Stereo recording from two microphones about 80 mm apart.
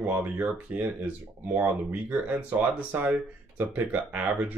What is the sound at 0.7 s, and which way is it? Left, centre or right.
Speech, centre.